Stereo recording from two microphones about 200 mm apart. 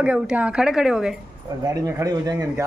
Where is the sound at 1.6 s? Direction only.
15° right (ahead or behind).